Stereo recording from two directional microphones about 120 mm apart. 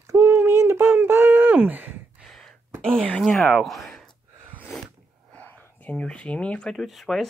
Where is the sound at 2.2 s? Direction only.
Centre (ahead or behind).